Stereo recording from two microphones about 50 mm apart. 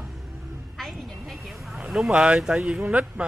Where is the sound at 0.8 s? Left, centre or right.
Centre.